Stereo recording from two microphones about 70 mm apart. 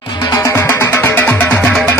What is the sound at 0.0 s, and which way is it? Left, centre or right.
Music, left.